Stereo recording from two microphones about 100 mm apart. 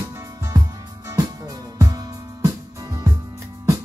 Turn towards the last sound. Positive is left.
turn(degrees=-35)  # may be behind; listen again after turning